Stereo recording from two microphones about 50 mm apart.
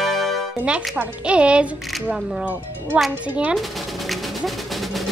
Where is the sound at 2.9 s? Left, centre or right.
Right.